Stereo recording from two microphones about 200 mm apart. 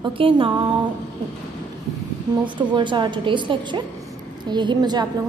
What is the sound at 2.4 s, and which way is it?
A woman's voice, 25° right (ahead or behind).